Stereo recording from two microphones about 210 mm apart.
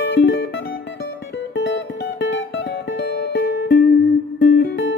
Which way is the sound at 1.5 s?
55° left (ahead or behind).